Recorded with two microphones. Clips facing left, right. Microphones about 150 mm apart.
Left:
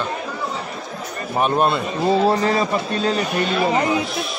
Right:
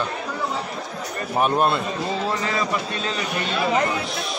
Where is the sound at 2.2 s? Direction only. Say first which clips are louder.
Left 7 dB; 35° left (ahead or behind).